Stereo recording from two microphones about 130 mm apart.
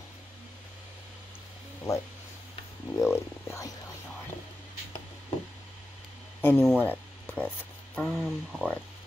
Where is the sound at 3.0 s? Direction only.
20° left (ahead or behind).